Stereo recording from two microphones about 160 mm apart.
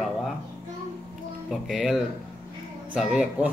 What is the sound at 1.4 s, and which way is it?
Speech, centre (ahead or behind).